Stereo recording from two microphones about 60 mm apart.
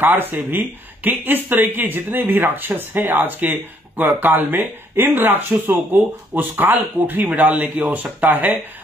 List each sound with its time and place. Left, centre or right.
0.0 s speech: right